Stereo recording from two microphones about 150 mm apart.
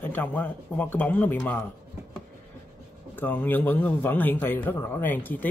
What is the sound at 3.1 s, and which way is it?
Speech, 10° left (ahead or behind).